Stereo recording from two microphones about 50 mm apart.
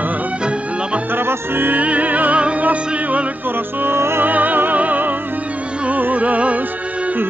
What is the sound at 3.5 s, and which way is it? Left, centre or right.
Music, right.